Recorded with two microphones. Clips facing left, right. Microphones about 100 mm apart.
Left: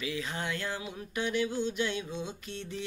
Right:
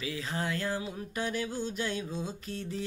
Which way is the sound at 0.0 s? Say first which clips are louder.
Right 1 dB; 35° right (ahead or behind).